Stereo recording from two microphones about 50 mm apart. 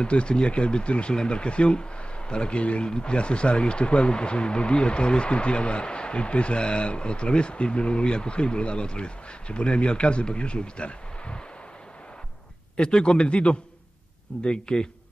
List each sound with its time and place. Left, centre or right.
0.0 s speech: left
12.7 s a man's voice: centre